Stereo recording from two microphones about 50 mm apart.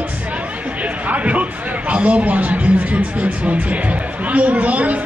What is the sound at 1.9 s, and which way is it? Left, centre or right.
Speech, right.